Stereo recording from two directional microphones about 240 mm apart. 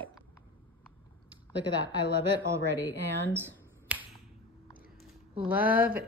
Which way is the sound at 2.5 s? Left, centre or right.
Centre.